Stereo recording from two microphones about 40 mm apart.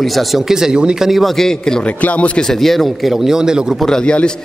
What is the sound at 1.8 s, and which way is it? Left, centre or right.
Speech, left.